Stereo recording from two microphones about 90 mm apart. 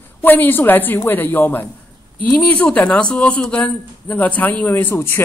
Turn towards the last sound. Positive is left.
turn(degrees=30)  # may be behind; listen again after turning